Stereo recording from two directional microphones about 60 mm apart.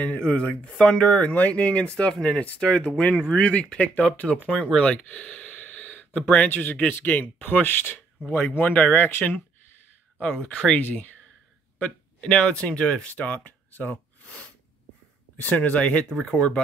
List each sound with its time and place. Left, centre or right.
0.0 s speech: left
4.8 s gasp: centre
6.2 s speech: left
10.4 s speech: left
11.8 s speech: centre
14.2 s sneeze: centre
15.4 s speech: left